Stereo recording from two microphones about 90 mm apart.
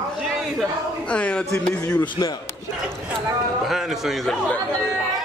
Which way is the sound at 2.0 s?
50° left (ahead or behind).